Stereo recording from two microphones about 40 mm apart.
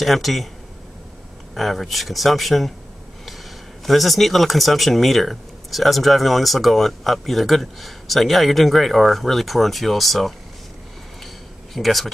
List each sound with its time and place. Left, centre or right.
0.0 s speech: centre
1.5 s speech: centre
3.8 s speech: centre
11.7 s speech: centre